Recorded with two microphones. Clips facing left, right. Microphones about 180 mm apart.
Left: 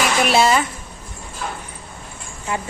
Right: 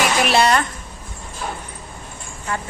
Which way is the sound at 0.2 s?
Centre (ahead or behind).